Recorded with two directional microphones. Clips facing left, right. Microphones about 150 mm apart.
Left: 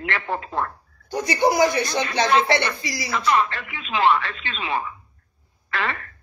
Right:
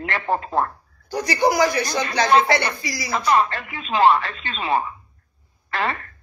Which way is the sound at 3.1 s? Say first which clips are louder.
Right 2 dB; 35° right (ahead or behind).